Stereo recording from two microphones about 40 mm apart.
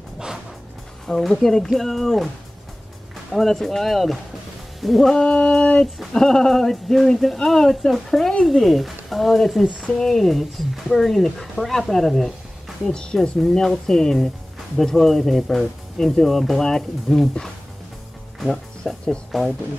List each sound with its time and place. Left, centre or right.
1.1 s speech: centre
4.7 s music: centre
5.1 s a sound: left
6.1 s speech: centre
9.8 s speech: centre
10.1 s speech: centre
12.9 s a sound: centre
13.4 s speech: centre
18.8 s speech: centre